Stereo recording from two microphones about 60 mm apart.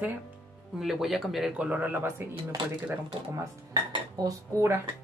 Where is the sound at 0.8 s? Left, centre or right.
Centre.